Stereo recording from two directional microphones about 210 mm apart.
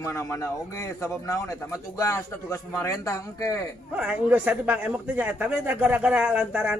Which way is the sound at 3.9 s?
5° right (ahead or behind).